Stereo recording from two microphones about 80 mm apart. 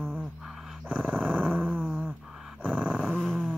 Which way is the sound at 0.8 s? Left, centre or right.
Right.